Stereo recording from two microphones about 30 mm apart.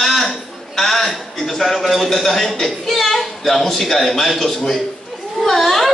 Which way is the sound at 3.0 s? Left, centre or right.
Centre.